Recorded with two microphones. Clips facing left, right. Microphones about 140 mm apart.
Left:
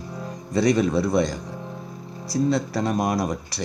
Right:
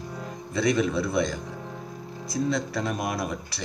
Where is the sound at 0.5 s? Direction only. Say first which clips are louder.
Left 4 dB; 35° left (ahead or behind).